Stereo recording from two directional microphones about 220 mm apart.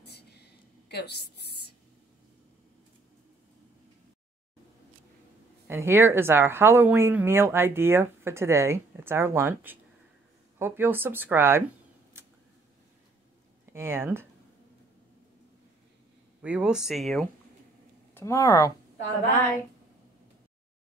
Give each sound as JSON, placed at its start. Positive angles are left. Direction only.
{"t": 0.0, "sound": "a sound", "side_deg": 50}
{"t": 5.7, "sound": "speech", "side_deg": -10}
{"t": 13.7, "sound": "speech", "side_deg": -10}
{"t": 16.4, "sound": "speech", "side_deg": -5}
{"t": 18.1, "sound": "speech", "side_deg": 15}